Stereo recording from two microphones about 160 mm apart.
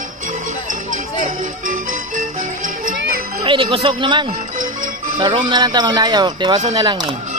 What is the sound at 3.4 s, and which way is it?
Speech, 30° right (ahead or behind).